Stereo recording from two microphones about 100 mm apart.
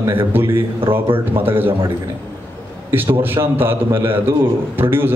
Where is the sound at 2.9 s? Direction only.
20° right (ahead or behind).